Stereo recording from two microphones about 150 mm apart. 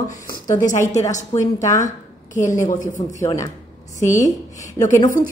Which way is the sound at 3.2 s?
20° left (ahead or behind).